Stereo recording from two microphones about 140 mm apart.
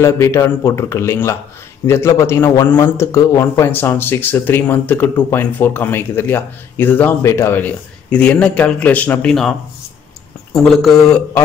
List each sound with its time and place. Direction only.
0.0 s a man's voice: 20° left (ahead or behind); by 9.6 s 5° left (ahead or behind)
10.8 s a man's voice: 5° left (ahead or behind)